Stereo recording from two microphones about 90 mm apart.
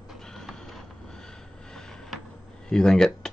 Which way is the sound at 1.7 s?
5° left (ahead or behind).